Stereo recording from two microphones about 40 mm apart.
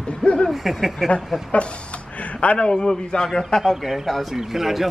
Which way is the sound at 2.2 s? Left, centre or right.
Left.